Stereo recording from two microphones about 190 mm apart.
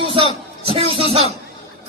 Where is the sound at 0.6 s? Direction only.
30° right (ahead or behind).